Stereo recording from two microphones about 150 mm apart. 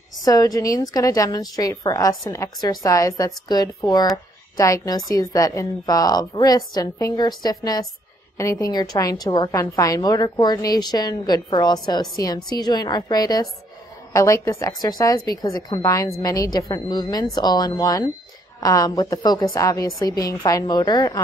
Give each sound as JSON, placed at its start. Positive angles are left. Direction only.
{"t": 0.2, "sound": "a woman's voice", "side_deg": 25}